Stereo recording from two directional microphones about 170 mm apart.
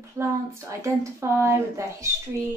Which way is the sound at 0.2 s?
15° right (ahead or behind).